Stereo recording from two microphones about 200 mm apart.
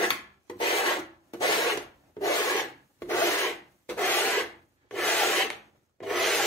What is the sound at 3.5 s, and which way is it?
Rub, 10° left (ahead or behind).